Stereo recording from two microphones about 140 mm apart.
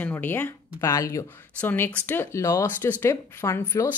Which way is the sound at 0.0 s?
15° left (ahead or behind).